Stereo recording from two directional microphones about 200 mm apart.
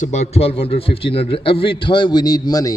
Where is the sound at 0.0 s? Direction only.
35° left (ahead or behind).